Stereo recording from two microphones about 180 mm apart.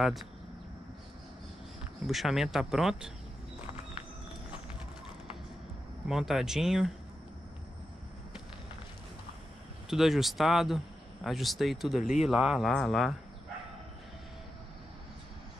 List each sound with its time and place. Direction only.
2.0 s speech: centre (ahead or behind)
6.0 s speech: centre (ahead or behind)
9.8 s speech: centre (ahead or behind)